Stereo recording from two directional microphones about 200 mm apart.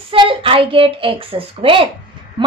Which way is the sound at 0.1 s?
25° right (ahead or behind).